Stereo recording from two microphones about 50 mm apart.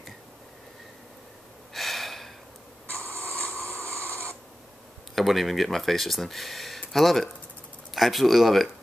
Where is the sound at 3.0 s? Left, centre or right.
Left.